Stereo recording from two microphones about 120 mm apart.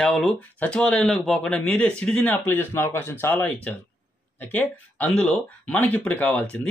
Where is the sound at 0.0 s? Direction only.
Centre (ahead or behind).